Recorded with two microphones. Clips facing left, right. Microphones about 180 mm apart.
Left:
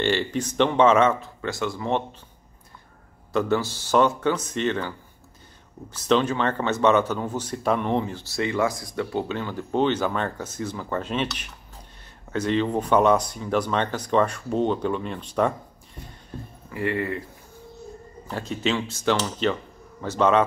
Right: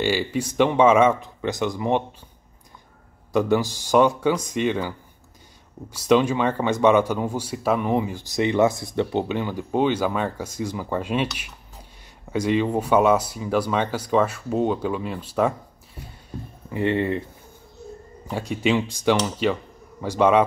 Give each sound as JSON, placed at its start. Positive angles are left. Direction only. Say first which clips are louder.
{"t": 0.0, "sound": "speech", "louder": "right 1 dB", "side_deg": -10}
{"t": 3.3, "sound": "speech", "louder": "right 3 dB", "side_deg": -15}
{"t": 16.7, "sound": "speech", "louder": "right 4 dB", "side_deg": -25}
{"t": 18.2, "sound": "speech", "louder": "right 3 dB", "side_deg": -10}